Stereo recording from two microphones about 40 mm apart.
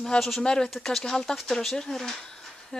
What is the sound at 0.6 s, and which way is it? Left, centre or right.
Speech, centre.